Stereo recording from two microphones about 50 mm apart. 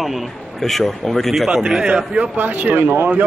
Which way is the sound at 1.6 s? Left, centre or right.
Centre.